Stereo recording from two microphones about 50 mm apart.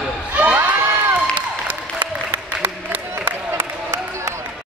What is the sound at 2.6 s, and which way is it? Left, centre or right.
Applause, right.